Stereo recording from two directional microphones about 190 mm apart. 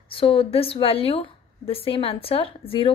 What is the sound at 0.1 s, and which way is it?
A woman's voice, 30° left (ahead or behind).